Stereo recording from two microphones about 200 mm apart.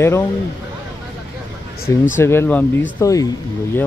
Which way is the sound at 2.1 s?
10° left (ahead or behind).